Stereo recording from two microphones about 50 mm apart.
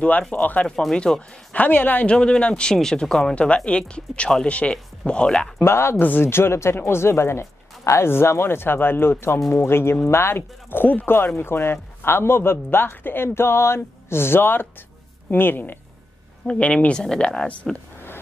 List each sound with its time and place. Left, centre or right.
0.3 s a woman's voice: left
0.7 s speech: centre
1.5 s a woman's voice: left
2.0 s speech: centre
3.3 s speech: left
5.6 s a man's voice: left
11.3 s a man's voice: left
16.4 s speech: left